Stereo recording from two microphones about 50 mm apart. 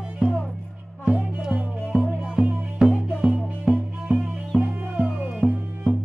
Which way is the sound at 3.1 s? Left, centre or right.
Centre.